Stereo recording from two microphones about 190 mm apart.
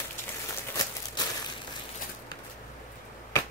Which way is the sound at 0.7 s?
20° left (ahead or behind).